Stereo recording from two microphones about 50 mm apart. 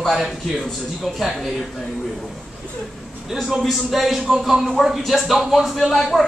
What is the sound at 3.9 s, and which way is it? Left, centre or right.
Speech, centre.